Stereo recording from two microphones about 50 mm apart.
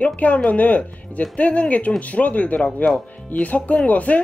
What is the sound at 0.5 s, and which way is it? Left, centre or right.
Speech, left.